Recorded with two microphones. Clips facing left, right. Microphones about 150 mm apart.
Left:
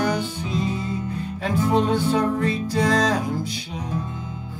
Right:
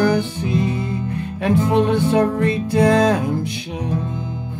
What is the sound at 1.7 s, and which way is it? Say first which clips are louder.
Music: right 3 dB; 60° right (ahead or behind).